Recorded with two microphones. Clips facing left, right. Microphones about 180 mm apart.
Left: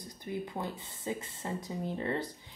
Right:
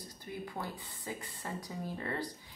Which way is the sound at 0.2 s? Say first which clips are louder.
Left 5 dB; 20° left (ahead or behind).